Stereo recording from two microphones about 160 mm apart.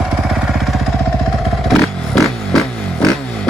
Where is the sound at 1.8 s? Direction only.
Centre (ahead or behind).